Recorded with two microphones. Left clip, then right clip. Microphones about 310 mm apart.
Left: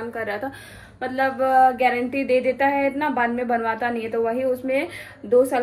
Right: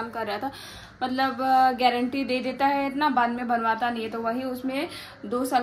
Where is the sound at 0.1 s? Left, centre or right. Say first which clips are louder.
Left 2 dB; centre.